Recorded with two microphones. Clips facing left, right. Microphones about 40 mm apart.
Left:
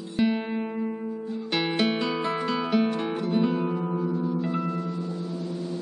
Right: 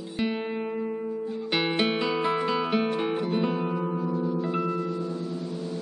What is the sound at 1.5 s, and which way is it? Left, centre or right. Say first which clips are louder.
Music: even; centre.